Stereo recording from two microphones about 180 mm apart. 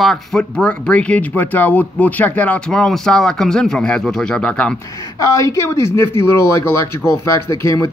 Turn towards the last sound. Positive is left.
turn(degrees=15)  # may be behind; listen again after turning